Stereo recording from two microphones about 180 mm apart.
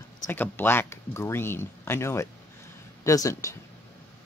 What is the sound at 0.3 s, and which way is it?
Speech, 10° left (ahead or behind).